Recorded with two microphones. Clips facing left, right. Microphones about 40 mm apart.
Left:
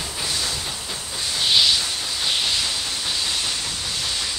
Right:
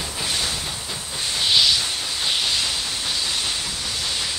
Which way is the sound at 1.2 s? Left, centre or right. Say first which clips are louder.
Even; centre.